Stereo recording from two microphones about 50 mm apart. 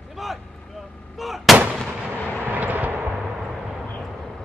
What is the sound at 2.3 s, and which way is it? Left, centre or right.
Vehicle, right.